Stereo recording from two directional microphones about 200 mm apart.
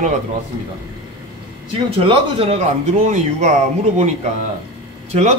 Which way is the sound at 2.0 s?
30° right (ahead or behind).